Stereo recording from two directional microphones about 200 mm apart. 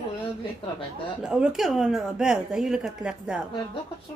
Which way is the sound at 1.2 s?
5° right (ahead or behind).